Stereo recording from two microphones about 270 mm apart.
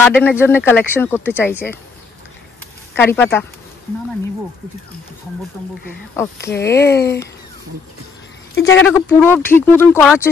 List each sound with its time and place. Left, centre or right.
0.0 s speech: centre
3.0 s speech: centre
6.3 s speech: left
8.6 s speech: centre